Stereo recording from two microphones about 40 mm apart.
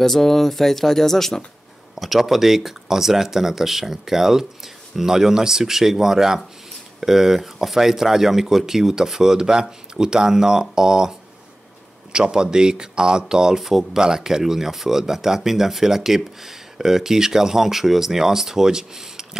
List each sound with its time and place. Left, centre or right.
0.0 s speech: centre
2.0 s speech: centre